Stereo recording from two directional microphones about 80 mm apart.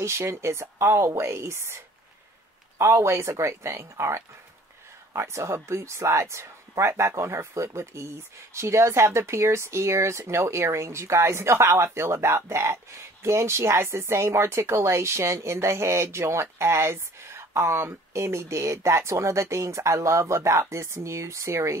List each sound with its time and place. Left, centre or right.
0.0 s speech: right
2.8 s speech: right
5.1 s speech: right